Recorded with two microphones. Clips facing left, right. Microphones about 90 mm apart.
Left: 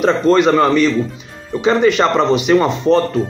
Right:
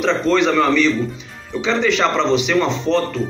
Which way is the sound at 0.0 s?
45° left (ahead or behind).